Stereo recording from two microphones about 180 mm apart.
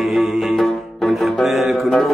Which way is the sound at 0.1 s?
Centre (ahead or behind).